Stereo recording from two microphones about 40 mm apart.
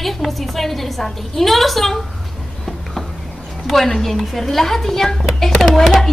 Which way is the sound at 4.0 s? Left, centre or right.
Centre.